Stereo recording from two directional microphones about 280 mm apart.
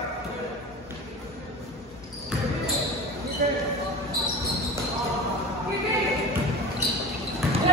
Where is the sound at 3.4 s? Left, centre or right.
Right.